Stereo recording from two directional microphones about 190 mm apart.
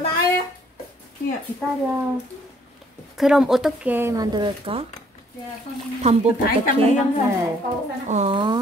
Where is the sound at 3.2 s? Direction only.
5° right (ahead or behind); by 4.8 s 25° right (ahead or behind).